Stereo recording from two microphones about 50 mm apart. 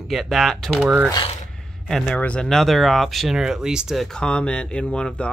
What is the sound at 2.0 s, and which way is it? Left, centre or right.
Speech, left.